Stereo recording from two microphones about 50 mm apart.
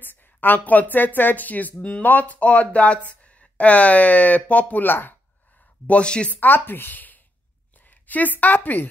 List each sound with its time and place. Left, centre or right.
0.0 s speech: left
5.9 s speech: left
6.3 s speech: left